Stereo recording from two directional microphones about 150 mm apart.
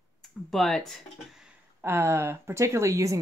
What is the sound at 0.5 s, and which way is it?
Speech, centre (ahead or behind).